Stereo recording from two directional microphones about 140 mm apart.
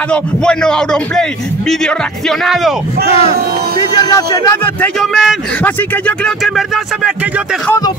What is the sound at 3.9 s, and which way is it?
Speech, 30° left (ahead or behind).